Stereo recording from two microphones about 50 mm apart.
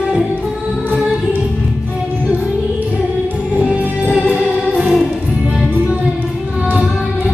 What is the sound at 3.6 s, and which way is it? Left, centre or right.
Music, centre.